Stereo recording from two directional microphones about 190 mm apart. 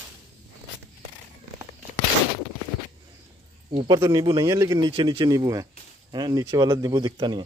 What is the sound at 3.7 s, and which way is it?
Speech, 25° right (ahead or behind).